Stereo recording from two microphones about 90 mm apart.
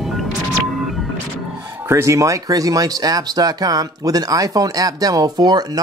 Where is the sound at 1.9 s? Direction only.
35° right (ahead or behind).